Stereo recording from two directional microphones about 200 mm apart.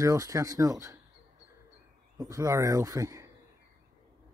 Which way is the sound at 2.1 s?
15° right (ahead or behind).